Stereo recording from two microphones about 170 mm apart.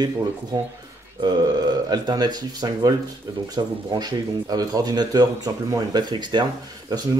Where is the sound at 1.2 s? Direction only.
25° right (ahead or behind).